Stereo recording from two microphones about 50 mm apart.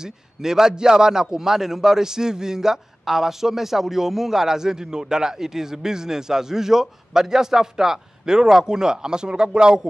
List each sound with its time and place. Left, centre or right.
0.0 s a man's voice: centre